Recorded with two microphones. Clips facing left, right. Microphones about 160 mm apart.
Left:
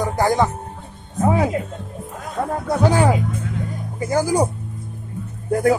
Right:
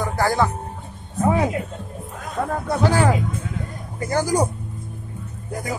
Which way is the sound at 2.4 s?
20° left (ahead or behind).